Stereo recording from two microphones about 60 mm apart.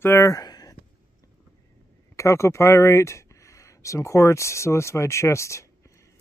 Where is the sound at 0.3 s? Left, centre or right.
Left.